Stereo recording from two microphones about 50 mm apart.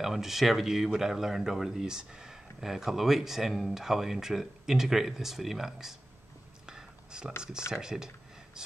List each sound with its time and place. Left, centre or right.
0.0 s speech: centre
6.6 s whispering: centre
7.7 s speech: centre